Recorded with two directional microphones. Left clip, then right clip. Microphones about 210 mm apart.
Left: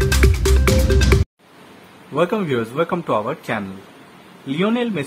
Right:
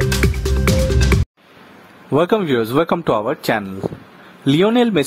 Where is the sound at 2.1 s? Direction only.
45° right (ahead or behind).